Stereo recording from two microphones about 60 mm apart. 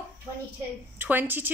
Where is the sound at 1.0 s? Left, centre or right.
Right.